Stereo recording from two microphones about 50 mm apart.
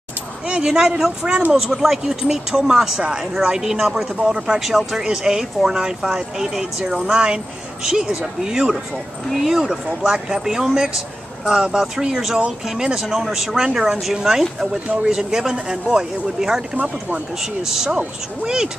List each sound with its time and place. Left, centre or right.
0.5 s speech: right
0.7 s speech: centre
4.6 s speech: centre
10.0 s speech: centre